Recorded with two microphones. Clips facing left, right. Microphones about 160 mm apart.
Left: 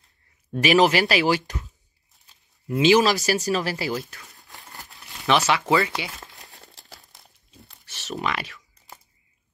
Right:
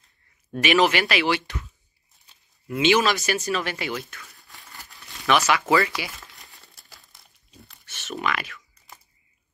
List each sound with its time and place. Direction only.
0.6 s speech: 35° left (ahead or behind)
2.8 s speech: 35° left (ahead or behind)
4.3 s crumpling: 20° left (ahead or behind)
4.6 s crumpling: 40° left (ahead or behind); by 6.2 s 25° left (ahead or behind)
7.8 s a sound: 35° left (ahead or behind)